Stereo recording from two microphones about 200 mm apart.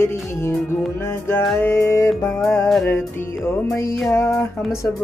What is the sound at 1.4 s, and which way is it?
Speech, centre (ahead or behind).